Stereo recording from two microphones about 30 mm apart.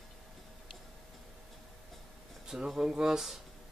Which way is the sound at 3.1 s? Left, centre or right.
Centre.